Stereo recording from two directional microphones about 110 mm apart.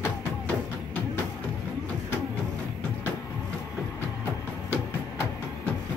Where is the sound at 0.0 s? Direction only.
15° left (ahead or behind).